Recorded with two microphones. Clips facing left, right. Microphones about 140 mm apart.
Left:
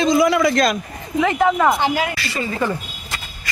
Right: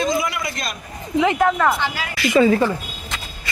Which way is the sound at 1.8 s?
50° left (ahead or behind).